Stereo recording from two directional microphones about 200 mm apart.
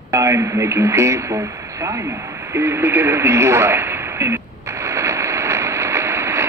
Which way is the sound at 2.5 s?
15° right (ahead or behind).